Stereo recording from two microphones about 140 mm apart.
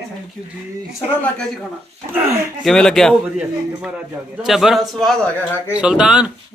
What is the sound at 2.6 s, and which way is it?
Speech, 5° left (ahead or behind).